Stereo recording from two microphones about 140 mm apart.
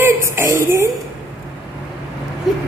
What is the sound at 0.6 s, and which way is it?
Speech, 20° right (ahead or behind).